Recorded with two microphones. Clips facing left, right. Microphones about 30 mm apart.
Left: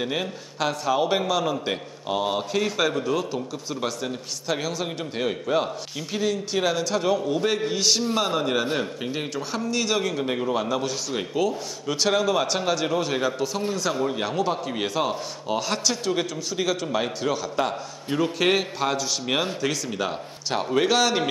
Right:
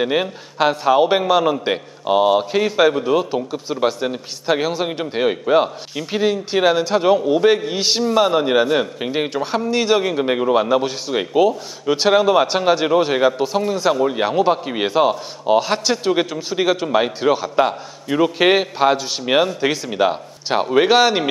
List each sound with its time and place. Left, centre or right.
0.0 s a man's voice: right